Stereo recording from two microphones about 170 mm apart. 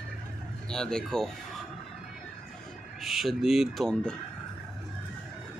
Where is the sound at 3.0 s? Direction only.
Centre (ahead or behind).